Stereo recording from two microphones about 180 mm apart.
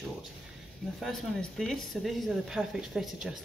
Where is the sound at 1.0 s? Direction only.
5° left (ahead or behind).